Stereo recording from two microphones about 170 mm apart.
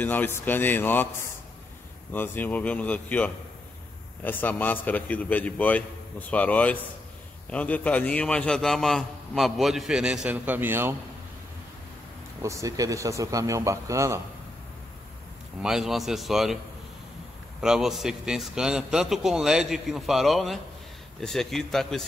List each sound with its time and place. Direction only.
0.0 s a man's voice: 10° left (ahead or behind)
2.1 s a man's voice: 10° left (ahead or behind); by 11.0 s 15° right (ahead or behind)
12.4 s a man's voice: 15° right (ahead or behind)
15.6 s a man's voice: 5° right (ahead or behind)
17.6 s a man's voice: 5° right (ahead or behind)